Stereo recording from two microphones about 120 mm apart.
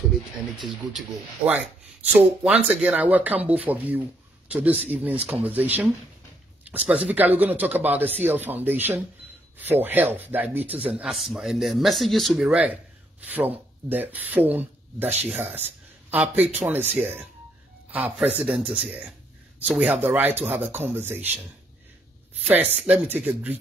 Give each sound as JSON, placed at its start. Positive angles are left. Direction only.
{"t": 0.6, "sound": "speech", "side_deg": 0}
{"t": 2.0, "sound": "speech", "side_deg": -15}
{"t": 18.4, "sound": "speech", "side_deg": -10}